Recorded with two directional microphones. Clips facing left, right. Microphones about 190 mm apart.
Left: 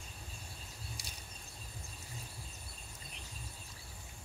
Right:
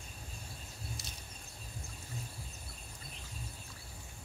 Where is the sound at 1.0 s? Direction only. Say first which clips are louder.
Right 2 dB; 15° left (ahead or behind).